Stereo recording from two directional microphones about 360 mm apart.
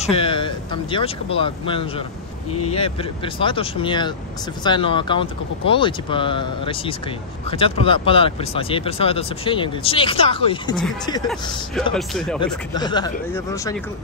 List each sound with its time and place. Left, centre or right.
0.0 s speech: centre